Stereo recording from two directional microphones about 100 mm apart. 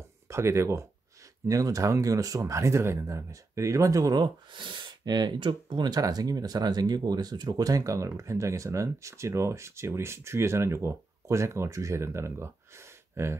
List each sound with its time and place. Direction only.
0.3 s speech: 30° right (ahead or behind)